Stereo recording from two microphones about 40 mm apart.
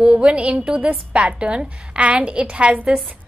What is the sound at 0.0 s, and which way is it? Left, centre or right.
A woman's voice, right.